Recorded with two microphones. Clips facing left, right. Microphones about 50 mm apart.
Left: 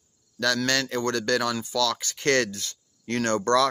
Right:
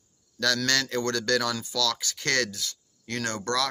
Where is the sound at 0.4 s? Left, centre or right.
Centre.